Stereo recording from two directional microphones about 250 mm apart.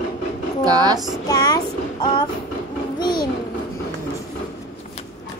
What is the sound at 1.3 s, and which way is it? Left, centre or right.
Child singing, centre.